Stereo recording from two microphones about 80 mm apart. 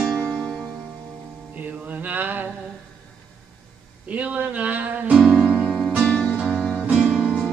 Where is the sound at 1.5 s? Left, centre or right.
Centre.